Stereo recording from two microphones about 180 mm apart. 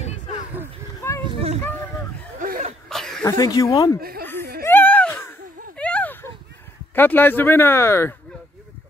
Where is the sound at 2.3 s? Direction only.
50° right (ahead or behind).